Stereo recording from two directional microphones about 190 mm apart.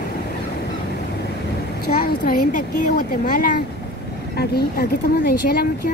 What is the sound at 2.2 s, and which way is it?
A woman's voice, 45° left (ahead or behind).